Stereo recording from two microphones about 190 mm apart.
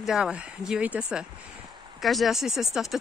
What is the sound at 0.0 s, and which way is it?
Speech, 5° right (ahead or behind).